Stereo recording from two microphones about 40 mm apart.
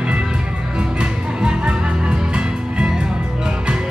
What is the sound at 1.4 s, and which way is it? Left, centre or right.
Music, right.